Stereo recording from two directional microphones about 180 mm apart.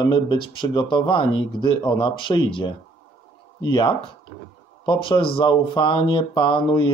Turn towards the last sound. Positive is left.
turn(degrees=25)  # may be behind; listen again after turning